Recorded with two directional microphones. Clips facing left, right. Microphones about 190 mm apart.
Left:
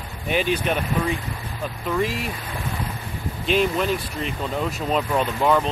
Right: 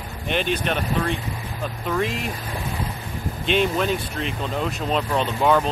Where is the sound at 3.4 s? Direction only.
5° left (ahead or behind).